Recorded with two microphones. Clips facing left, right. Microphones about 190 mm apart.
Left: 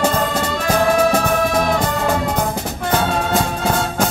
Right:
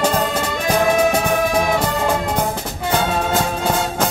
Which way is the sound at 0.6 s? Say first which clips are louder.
Even; 15° right (ahead or behind).